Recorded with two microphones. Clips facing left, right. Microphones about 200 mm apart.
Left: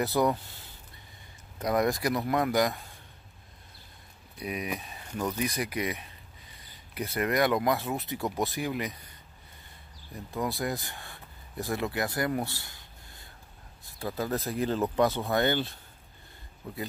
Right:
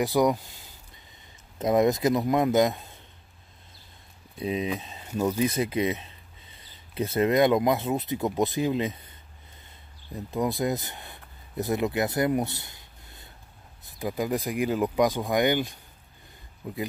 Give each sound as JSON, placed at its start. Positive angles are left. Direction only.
{"t": 0.0, "sound": "speech", "side_deg": -15}
{"t": 1.6, "sound": "speech", "side_deg": -20}
{"t": 4.4, "sound": "speech", "side_deg": -25}
{"t": 10.1, "sound": "speech", "side_deg": -20}